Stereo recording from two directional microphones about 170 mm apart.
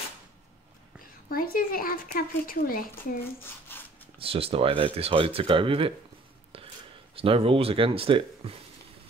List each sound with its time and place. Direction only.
1.3 s speech: 60° left (ahead or behind)
3.3 s hands: 10° left (ahead or behind)
4.2 s speech: 35° right (ahead or behind)
7.2 s speech: 35° right (ahead or behind)